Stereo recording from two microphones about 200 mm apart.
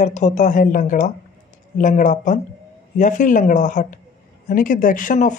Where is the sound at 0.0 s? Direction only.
35° left (ahead or behind).